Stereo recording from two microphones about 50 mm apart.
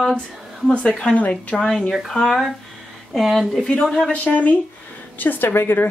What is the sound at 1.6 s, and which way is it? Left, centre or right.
Speech, centre.